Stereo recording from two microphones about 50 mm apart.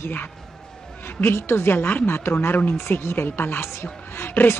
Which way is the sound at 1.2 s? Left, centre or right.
Left.